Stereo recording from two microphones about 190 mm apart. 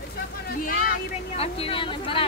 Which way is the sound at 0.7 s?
50° left (ahead or behind).